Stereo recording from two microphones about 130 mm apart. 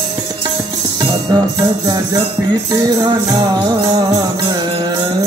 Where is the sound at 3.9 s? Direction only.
30° right (ahead or behind).